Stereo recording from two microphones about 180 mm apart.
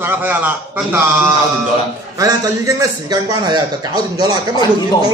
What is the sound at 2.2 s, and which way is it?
A man's voice, 20° right (ahead or behind).